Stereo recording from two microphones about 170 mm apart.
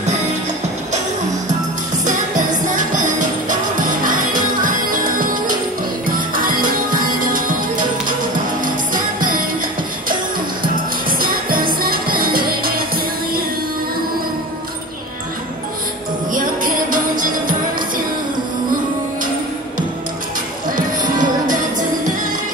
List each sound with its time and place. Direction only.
2.9 s music: 50° right (ahead or behind)
8.9 s music: 55° right (ahead or behind)
10.6 s music: 60° right (ahead or behind)
16.3 s music: 55° right (ahead or behind)
20.7 s music: 50° right (ahead or behind)